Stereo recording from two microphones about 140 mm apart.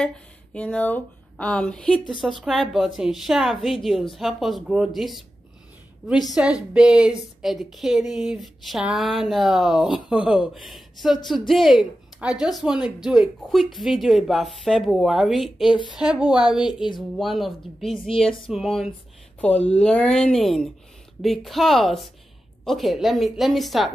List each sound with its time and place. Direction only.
0.0 s speech: 5° left (ahead or behind)
6.3 s speech: 5° right (ahead or behind)
19.4 s speech: 10° left (ahead or behind)